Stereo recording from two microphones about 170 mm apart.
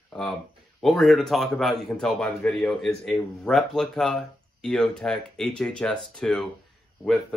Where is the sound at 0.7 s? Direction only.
Centre (ahead or behind).